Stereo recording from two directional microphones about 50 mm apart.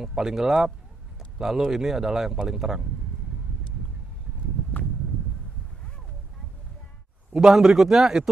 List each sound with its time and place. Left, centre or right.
0.0 s a man's voice: centre
7.3 s a man's voice: centre